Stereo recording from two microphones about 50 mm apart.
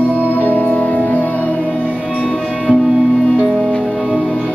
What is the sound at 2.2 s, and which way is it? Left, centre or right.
Music, centre.